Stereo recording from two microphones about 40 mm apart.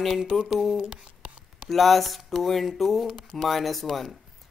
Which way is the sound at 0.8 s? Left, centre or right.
Right.